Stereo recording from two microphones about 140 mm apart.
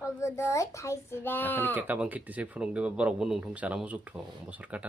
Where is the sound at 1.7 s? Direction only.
10° right (ahead or behind).